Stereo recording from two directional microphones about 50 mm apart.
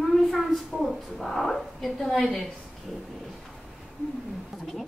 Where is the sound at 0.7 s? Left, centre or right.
Centre.